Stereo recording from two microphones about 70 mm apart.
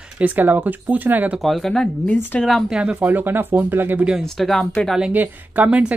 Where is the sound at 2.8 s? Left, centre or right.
Centre.